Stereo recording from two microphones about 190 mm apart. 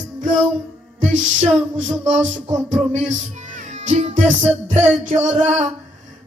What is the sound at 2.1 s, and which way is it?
Music, 40° right (ahead or behind).